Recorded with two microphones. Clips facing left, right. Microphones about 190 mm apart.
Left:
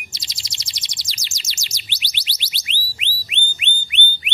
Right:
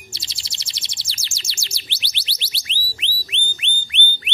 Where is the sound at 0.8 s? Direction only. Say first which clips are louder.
Even; 15° left (ahead or behind).